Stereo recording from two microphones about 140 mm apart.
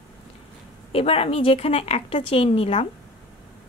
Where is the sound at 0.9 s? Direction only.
45° left (ahead or behind).